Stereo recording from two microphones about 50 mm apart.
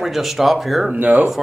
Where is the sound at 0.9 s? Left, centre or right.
Right.